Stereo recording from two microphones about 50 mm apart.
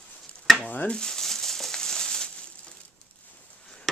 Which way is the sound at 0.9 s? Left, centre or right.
Centre.